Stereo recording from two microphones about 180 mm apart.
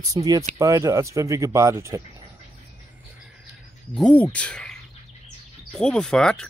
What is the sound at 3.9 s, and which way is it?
Speech, 5° left (ahead or behind).